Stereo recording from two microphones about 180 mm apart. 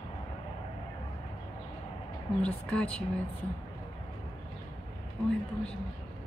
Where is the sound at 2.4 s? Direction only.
5° left (ahead or behind).